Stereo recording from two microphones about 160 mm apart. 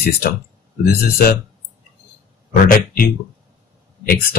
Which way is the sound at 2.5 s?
65° left (ahead or behind).